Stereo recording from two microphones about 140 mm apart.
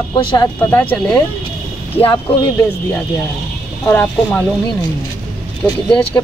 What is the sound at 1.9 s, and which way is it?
Speech, 35° left (ahead or behind).